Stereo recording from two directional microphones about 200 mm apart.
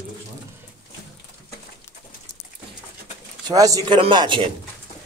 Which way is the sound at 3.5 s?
15° right (ahead or behind).